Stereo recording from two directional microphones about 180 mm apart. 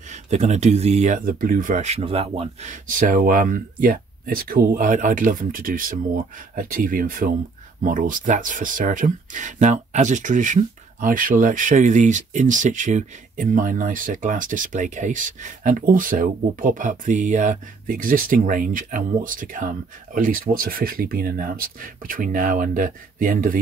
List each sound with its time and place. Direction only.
0.1 s speech: 40° right (ahead or behind)